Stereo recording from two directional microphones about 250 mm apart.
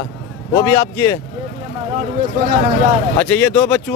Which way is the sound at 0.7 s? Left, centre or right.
Centre.